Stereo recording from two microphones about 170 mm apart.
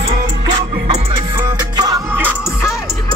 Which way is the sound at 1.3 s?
25° right (ahead or behind).